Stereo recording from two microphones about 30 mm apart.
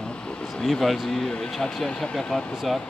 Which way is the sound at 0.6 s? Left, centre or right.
Centre.